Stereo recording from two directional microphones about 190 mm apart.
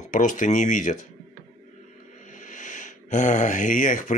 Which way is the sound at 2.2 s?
40° left (ahead or behind).